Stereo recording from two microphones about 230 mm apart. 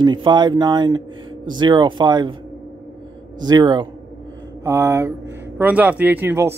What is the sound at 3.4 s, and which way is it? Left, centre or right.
Speech, centre.